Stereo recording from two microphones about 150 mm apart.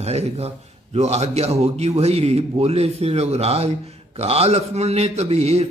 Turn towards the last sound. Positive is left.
turn(degrees=-45)  # may be behind; listen again after turning